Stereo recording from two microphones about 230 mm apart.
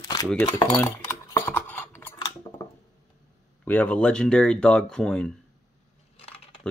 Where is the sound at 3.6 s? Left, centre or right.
Centre.